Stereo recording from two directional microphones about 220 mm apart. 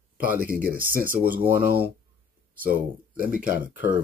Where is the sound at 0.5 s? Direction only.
40° right (ahead or behind).